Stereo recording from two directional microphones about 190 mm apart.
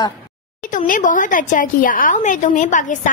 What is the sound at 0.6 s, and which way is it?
Speech, 45° left (ahead or behind).